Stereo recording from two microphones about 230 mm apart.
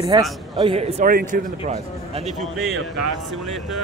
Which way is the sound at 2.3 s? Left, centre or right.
Centre.